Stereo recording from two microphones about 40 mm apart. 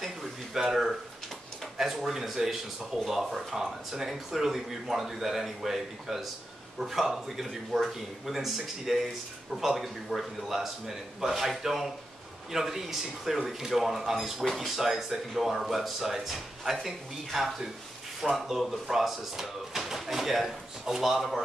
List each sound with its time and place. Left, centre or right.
0.0 s a sound: centre
1.8 s speech: centre
14.4 s speech: centre
14.8 s speech: centre